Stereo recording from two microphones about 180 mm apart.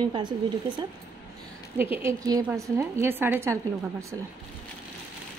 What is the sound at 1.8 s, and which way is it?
A woman's voice, 10° right (ahead or behind).